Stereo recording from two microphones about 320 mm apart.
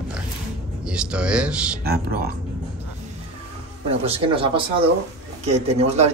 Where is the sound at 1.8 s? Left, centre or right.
Right.